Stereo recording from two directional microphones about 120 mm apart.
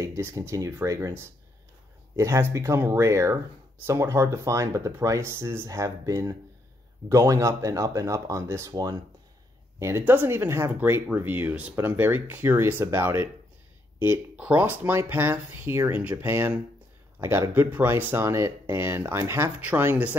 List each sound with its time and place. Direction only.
0.0 s speech: 25° right (ahead or behind)